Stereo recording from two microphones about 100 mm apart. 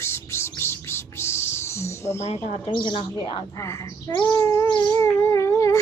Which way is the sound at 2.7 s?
55° left (ahead or behind).